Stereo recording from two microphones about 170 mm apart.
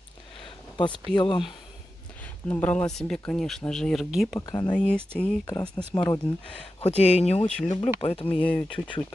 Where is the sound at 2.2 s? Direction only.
10° left (ahead or behind).